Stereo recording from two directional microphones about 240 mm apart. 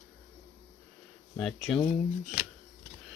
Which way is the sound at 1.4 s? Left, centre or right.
Centre.